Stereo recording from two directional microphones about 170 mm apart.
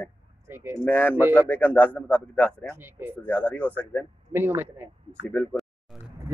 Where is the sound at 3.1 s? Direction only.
10° left (ahead or behind).